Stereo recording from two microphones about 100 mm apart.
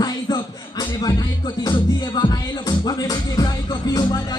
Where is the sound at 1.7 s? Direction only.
50° left (ahead or behind).